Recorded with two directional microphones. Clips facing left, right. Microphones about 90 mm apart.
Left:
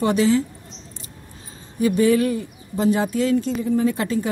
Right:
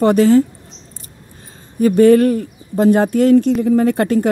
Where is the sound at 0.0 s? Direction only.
50° right (ahead or behind).